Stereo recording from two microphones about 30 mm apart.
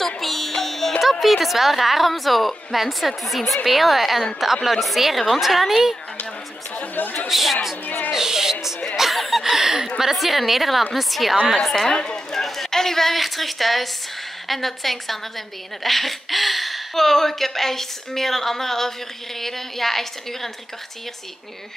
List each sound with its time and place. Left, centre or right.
0.0 s music: centre
1.2 s a woman's voice: centre
6.8 s chatter: left
7.2 s a woman's voice: centre
8.1 s a sound: centre
9.1 s chuckle: centre
10.1 s a woman's voice: centre
11.5 s a woman's voice: centre
12.3 s a sound: centre
13.1 s a woman's voice: centre
16.9 s a woman's voice: centre